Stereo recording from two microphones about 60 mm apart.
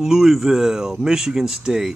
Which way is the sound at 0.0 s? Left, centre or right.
Centre.